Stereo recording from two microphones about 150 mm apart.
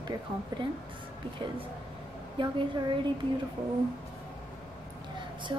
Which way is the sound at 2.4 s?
35° right (ahead or behind).